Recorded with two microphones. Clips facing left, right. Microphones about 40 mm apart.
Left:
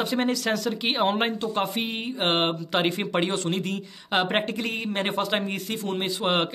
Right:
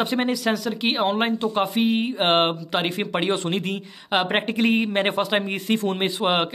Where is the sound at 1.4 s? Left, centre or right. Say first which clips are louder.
Right 4 dB; centre.